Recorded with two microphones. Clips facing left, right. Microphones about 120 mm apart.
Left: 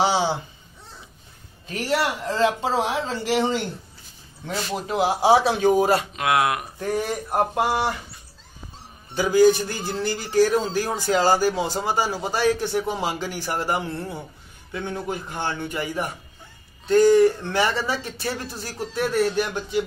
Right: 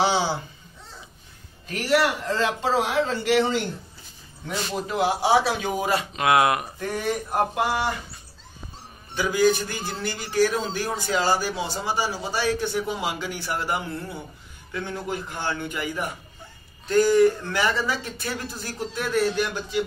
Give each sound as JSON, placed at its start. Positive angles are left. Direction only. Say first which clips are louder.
{"t": 0.0, "sound": "a sound", "louder": "left 1 dB", "side_deg": 25}
{"t": 1.7, "sound": "a man's voice", "louder": "right 2 dB", "side_deg": 30}
{"t": 4.8, "sound": "a man's voice", "louder": "left 4 dB", "side_deg": 30}
{"t": 6.1, "sound": "speech", "louder": "right 2 dB", "side_deg": 0}
{"t": 7.5, "sound": "a man's voice", "louder": "left 2 dB", "side_deg": 35}
{"t": 9.1, "sound": "a man's voice", "louder": "left 4 dB", "side_deg": 35}